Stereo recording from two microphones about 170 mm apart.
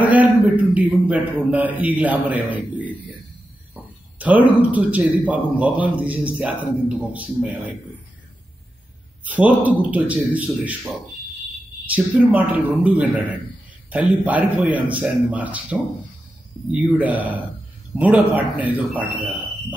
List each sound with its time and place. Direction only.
0.0 s speech: 10° right (ahead or behind)
9.2 s speech: 10° right (ahead or behind)
11.9 s speech: 10° right (ahead or behind)